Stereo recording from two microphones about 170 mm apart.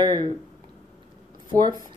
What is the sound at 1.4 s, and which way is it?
Speech, 25° right (ahead or behind).